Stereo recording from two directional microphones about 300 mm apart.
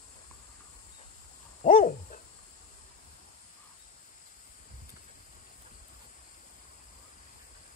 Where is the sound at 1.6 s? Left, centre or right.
Left.